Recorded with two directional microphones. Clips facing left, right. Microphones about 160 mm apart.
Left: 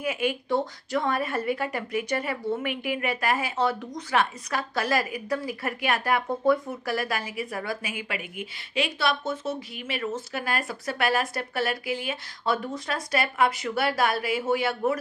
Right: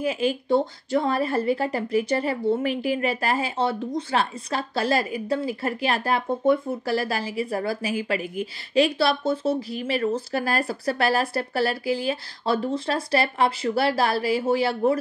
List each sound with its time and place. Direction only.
0.0 s speech: 30° right (ahead or behind)